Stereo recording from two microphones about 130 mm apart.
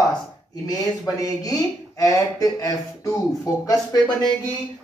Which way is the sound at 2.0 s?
25° left (ahead or behind).